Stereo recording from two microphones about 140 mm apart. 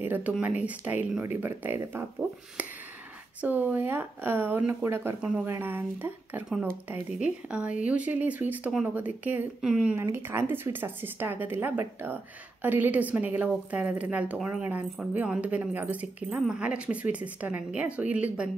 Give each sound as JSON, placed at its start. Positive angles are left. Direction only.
{"t": 0.0, "sound": "a woman's voice", "side_deg": -10}
{"t": 2.6, "sound": "a sound", "side_deg": -10}
{"t": 3.3, "sound": "a woman's voice", "side_deg": -10}